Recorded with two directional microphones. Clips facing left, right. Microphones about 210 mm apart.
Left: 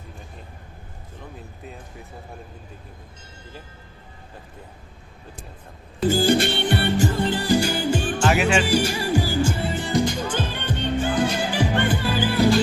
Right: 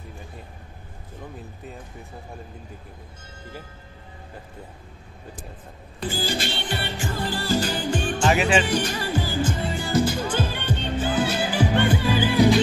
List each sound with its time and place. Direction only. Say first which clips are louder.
6.0 s music: left 9 dB; 50° left (ahead or behind)
7.2 s music: left 4 dB; 20° left (ahead or behind); by 12.5 s 10° right (ahead or behind)